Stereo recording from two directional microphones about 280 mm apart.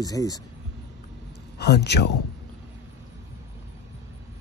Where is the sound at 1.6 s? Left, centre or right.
Left.